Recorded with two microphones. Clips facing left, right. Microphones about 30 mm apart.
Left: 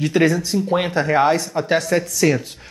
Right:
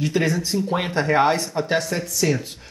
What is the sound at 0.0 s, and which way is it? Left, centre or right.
Speech, centre.